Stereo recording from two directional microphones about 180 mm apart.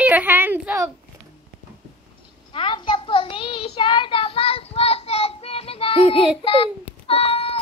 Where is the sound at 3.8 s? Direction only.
25° left (ahead or behind).